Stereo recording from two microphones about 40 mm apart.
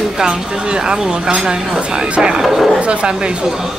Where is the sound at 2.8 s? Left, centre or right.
Right.